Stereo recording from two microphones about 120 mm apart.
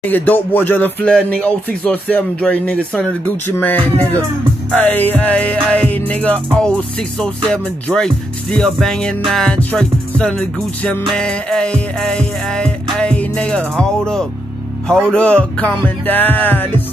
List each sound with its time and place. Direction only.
0.0 s music: 15° left (ahead or behind)